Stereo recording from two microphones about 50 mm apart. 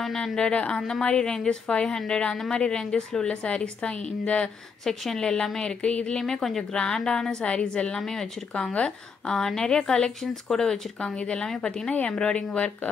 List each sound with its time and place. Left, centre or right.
0.0 s a woman's voice: centre
0.4 s a woman's voice: centre
0.7 s a woman's voice: centre
4.8 s speech: centre